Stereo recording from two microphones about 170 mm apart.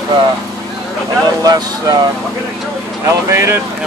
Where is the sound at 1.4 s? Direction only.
20° right (ahead or behind).